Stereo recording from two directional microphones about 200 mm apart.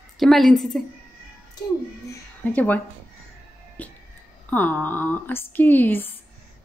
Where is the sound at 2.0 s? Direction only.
10° left (ahead or behind).